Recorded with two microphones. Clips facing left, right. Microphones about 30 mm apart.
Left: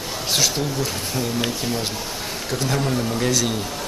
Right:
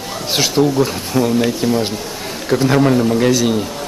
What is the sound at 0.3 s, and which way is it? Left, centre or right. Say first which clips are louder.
Speech: right 7 dB; right.